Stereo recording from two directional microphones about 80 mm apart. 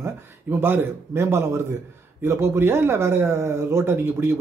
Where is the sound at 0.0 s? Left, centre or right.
Right.